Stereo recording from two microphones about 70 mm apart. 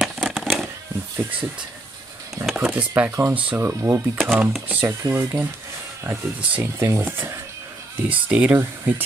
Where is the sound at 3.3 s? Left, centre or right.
Right.